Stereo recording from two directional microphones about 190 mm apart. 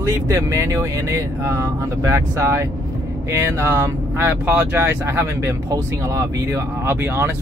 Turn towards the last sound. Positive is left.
turn(degrees=-10)  # may be behind; listen again after turning